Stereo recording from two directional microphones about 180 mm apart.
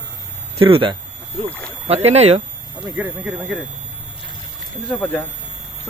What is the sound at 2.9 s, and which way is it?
Speech, 5° right (ahead or behind).